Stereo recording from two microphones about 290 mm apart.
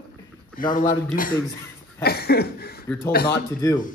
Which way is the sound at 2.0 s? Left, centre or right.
Left.